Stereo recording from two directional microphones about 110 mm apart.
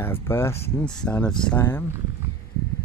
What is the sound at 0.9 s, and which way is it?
Speech, 10° left (ahead or behind).